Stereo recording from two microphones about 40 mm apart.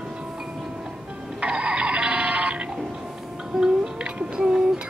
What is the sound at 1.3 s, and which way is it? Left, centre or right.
Music, right.